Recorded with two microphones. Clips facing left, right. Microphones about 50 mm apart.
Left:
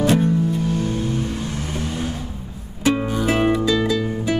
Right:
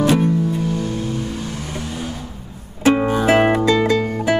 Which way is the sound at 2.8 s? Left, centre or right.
Right.